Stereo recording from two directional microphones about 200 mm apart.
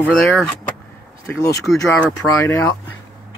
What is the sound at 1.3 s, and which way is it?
Speech, 10° left (ahead or behind).